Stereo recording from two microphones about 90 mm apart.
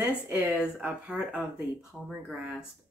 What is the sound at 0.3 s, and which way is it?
Speech, 30° right (ahead or behind).